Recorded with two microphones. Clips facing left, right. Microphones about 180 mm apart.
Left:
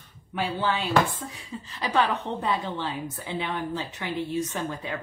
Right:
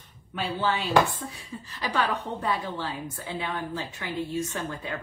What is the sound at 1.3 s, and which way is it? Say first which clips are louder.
A woman's voice: left 2 dB; 20° left (ahead or behind).